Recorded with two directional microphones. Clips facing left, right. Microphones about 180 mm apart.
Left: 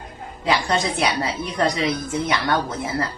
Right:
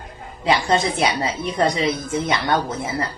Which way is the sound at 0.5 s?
20° right (ahead or behind).